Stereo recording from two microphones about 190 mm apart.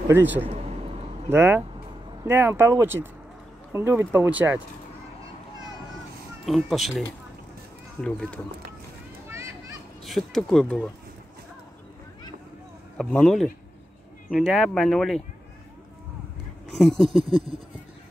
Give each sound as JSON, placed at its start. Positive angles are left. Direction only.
{"t": 1.3, "sound": "speech", "side_deg": -10}
{"t": 6.4, "sound": "speech", "side_deg": 0}
{"t": 8.0, "sound": "speech", "side_deg": 5}
{"t": 9.3, "sound": "children playing", "side_deg": -15}
{"t": 10.0, "sound": "speech", "side_deg": 0}
{"t": 12.9, "sound": "speech", "side_deg": 5}
{"t": 16.7, "sound": "speech", "side_deg": 0}
{"t": 17.2, "sound": "a sound", "side_deg": -30}